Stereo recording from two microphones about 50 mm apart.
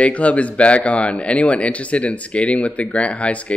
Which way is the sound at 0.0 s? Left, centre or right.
Left.